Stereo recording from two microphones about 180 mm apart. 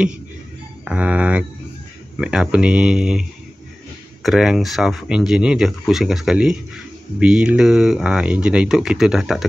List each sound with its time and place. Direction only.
0.8 s speech: 5° right (ahead or behind)